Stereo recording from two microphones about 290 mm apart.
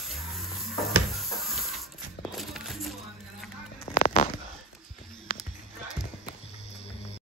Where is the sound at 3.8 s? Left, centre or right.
Left.